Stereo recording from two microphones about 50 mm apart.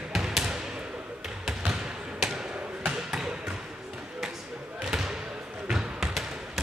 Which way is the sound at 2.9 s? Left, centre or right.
Centre.